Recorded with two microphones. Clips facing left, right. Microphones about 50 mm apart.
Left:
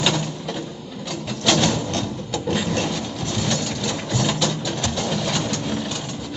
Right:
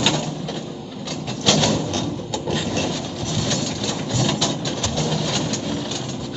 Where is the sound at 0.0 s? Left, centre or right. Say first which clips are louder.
Right 1 dB; centre.